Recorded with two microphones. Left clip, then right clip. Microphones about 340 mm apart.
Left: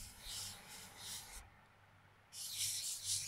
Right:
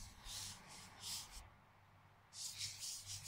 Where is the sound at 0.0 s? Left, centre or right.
Centre.